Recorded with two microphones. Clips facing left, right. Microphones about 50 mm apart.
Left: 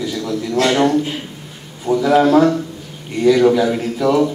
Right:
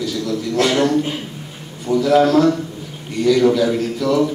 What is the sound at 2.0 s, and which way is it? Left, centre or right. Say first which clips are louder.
A man's voice: left 1 dB; centre.